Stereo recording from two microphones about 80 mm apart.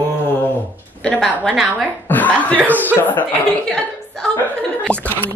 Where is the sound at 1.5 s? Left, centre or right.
Centre.